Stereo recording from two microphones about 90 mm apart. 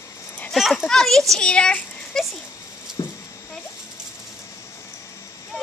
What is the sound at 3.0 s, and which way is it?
Speech, 45° left (ahead or behind).